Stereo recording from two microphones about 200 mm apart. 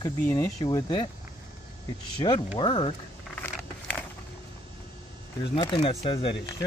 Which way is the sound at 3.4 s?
10° left (ahead or behind).